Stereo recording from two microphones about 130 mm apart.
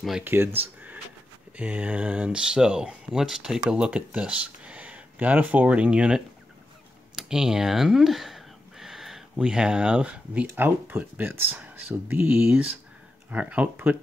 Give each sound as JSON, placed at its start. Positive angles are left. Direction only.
{"t": 0.2, "sound": "speech", "side_deg": -15}
{"t": 1.6, "sound": "speech", "side_deg": -10}